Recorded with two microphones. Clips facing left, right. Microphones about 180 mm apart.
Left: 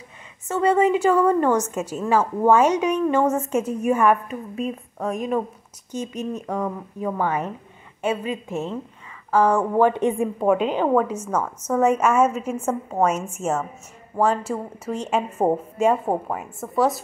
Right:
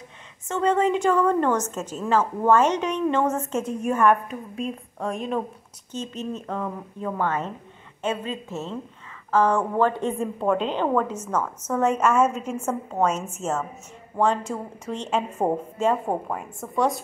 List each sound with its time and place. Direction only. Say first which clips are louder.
0.5 s a woman's voice: left 3 dB; 10° left (ahead or behind)